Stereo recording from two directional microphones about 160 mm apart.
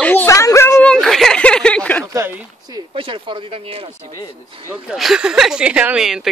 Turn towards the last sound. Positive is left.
turn(degrees=-5)  # may be behind; listen again after turning